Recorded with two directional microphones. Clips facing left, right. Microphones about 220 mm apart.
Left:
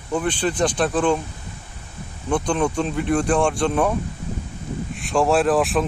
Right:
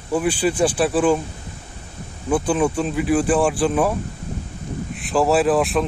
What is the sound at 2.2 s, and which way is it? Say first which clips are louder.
Speech: right 2 dB; 5° right (ahead or behind).